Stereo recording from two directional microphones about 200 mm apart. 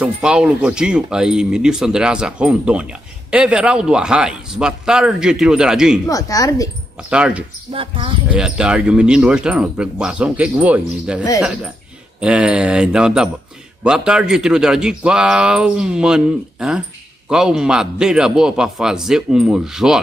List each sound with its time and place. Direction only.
0.0 s speech: 5° right (ahead or behind)
6.0 s speech: 15° left (ahead or behind)
7.1 s speech: 5° right (ahead or behind)
7.7 s speech: 25° right (ahead or behind)
8.3 s speech: 5° right (ahead or behind)